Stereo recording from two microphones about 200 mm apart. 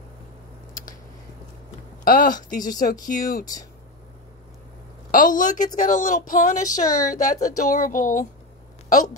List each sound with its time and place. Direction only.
2.0 s speech: 45° left (ahead or behind)
5.1 s speech: 40° left (ahead or behind)